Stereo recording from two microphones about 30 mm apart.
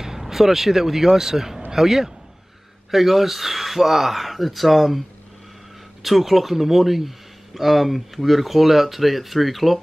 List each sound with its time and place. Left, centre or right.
0.0 s a man's voice: centre
6.0 s speech: centre